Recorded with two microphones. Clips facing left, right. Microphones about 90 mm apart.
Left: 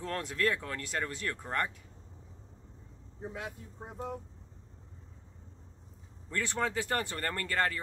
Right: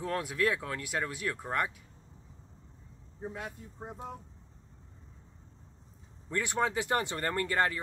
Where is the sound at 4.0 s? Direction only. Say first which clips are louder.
Left 5 dB; 20° right (ahead or behind).